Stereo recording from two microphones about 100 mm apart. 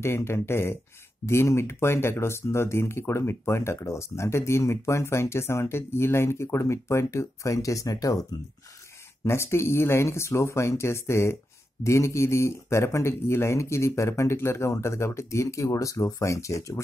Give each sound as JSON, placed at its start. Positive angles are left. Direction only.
{"t": 0.0, "sound": "speech", "side_deg": 25}
{"t": 9.2, "sound": "speech", "side_deg": 25}